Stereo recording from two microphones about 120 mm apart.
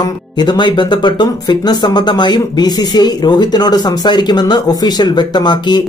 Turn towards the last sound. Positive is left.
turn(degrees=35)  # may be behind; listen again after turning